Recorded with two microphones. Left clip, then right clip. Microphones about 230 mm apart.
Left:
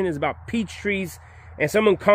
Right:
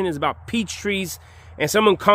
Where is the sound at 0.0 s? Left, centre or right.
Centre.